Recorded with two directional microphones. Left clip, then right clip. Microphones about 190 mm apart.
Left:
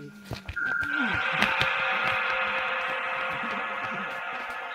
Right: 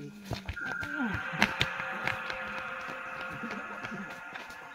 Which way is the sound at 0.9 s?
45° left (ahead or behind).